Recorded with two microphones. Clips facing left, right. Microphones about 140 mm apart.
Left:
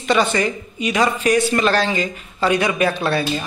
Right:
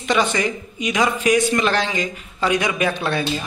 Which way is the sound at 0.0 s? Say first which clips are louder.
Left 2 dB; 15° right (ahead or behind).